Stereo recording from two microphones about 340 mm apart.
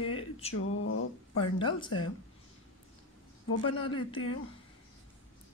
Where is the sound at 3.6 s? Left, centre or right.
Centre.